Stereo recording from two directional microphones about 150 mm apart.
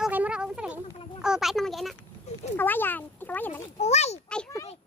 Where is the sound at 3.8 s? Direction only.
45° left (ahead or behind).